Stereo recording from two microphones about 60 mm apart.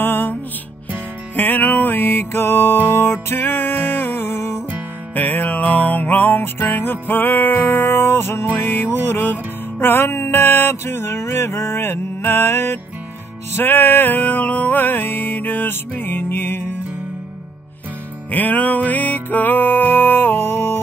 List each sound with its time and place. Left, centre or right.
0.0 s music: left
5.1 s music: left
18.3 s music: left